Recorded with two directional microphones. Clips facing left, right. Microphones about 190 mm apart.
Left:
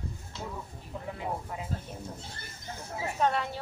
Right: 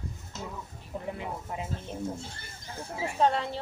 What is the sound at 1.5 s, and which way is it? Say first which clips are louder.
Speech: right 2 dB; 25° right (ahead or behind).